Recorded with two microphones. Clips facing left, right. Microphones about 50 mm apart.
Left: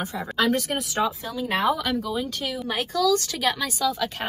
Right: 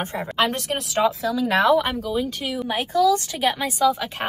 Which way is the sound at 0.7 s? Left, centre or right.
Right.